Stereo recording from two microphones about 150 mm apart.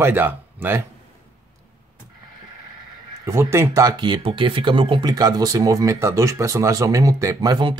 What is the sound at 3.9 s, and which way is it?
Speech, 30° right (ahead or behind).